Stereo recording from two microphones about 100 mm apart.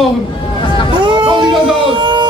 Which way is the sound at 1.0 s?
50° right (ahead or behind).